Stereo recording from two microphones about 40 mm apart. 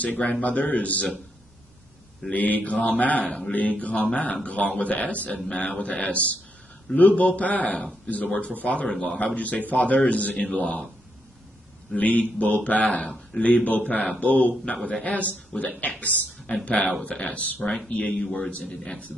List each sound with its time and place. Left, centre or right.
0.0 s a man's voice: left
2.3 s mantra: left
2.9 s a man's voice: left
3.3 s speech: centre
3.7 s a man's voice: left
12.0 s a man's voice: left
13.7 s a man's voice: left
17.6 s speech: left
17.8 s a man's voice: left
18.3 s speech: left